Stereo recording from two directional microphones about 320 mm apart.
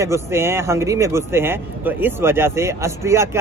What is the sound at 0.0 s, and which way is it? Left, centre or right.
A man's voice, centre.